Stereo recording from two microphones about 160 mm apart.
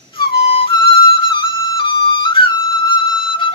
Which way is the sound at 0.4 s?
35° left (ahead or behind).